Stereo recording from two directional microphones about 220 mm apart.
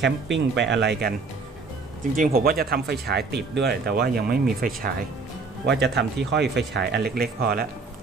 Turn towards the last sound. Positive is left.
turn(degrees=-45)  # may be behind; listen again after turning